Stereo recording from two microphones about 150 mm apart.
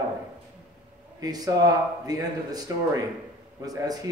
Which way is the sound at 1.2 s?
25° right (ahead or behind).